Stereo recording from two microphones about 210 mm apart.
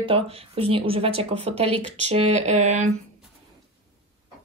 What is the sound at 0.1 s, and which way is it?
Speech, 25° right (ahead or behind).